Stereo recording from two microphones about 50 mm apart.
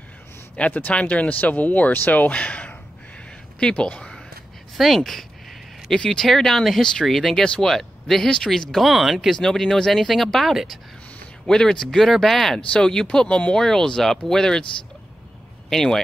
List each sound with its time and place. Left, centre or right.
0.6 s speech: left
4.7 s speech: centre
8.8 s speech: centre
9.3 s speech: centre
11.4 s speech: centre
15.7 s speech: centre